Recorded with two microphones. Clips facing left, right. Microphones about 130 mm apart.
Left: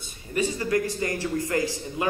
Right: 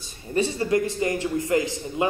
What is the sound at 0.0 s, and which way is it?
A man's voice, 30° right (ahead or behind).